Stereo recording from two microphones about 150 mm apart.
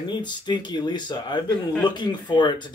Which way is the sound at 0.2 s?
30° left (ahead or behind).